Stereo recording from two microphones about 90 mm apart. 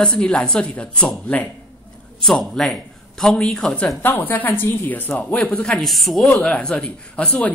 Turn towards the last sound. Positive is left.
turn(degrees=15)  # may be behind; listen again after turning